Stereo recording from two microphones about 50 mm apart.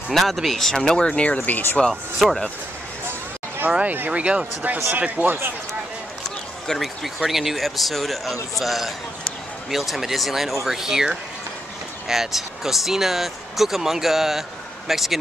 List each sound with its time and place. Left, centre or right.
0.1 s speech: centre; by 1.4 s left
1.4 s speech: left
1.9 s speech: centre
3.8 s speech: right
4.1 s speech: right
5.2 s speech: right
6.2 s run: centre
7.2 s speech: centre